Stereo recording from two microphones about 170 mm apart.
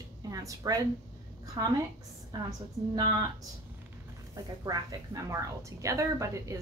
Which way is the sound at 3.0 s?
25° right (ahead or behind).